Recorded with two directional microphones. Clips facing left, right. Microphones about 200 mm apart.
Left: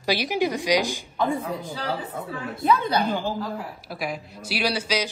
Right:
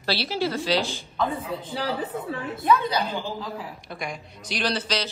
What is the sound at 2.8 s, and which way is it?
Speech, 55° left (ahead or behind).